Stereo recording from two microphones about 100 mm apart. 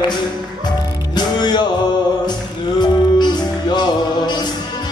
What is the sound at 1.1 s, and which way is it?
Music, 45° left (ahead or behind).